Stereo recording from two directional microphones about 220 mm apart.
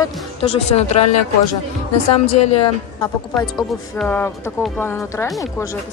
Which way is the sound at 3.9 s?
10° left (ahead or behind).